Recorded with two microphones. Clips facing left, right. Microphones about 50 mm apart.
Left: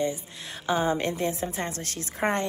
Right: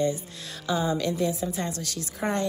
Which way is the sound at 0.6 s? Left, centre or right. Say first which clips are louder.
Left 1 dB; left.